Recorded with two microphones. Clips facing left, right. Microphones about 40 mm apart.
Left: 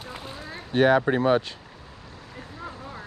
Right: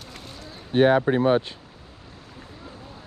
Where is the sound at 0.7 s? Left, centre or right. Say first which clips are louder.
Right 1 dB; centre.